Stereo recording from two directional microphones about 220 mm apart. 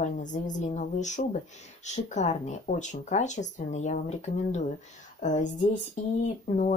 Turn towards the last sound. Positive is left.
turn(degrees=30)  # may be behind; listen again after turning